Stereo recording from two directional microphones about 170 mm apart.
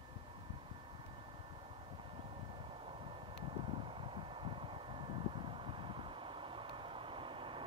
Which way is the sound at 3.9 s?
30° right (ahead or behind).